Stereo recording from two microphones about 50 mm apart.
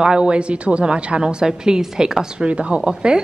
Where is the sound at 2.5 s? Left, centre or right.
Right.